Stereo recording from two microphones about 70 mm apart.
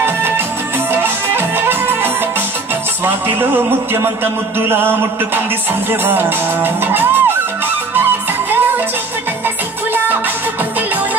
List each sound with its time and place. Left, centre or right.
0.9 s music: right
3.3 s speech: right
8.5 s music: right